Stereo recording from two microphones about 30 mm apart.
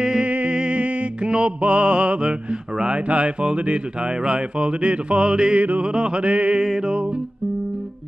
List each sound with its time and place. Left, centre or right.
0.2 s music: right
0.5 s music: right
6.6 s music: centre